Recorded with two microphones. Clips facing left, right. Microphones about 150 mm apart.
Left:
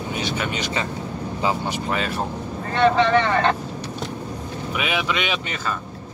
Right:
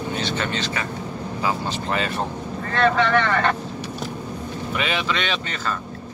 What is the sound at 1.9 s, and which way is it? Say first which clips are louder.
Speech: right 2 dB; centre (ahead or behind).